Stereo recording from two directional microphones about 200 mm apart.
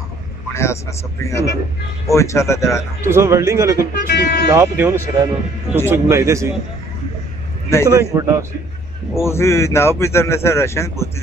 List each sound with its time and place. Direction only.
0.5 s speech: 15° left (ahead or behind)
3.0 s speech: 15° right (ahead or behind)
3.9 s speech: 50° left (ahead or behind)
4.5 s speech: 15° right (ahead or behind)
7.8 s speech: 15° right (ahead or behind)
9.1 s speech: 15° left (ahead or behind)